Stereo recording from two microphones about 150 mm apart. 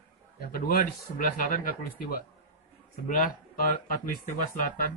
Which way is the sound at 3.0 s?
70° left (ahead or behind).